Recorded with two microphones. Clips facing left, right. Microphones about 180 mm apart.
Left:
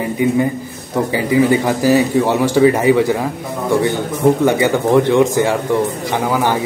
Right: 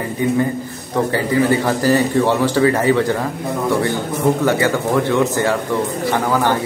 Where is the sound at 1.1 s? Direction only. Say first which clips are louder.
Left 4 dB; 15° left (ahead or behind).